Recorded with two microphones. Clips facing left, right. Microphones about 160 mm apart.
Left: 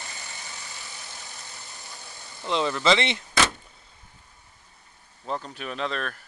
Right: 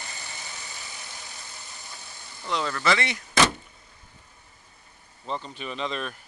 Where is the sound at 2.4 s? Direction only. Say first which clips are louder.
Left 3 dB; 20° left (ahead or behind).